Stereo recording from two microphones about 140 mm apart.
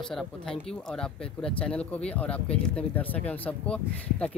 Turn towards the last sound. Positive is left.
turn(degrees=10)  # may be behind; listen again after turning